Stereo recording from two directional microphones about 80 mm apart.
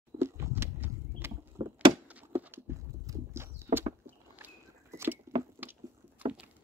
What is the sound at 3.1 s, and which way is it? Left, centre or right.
Horse, right.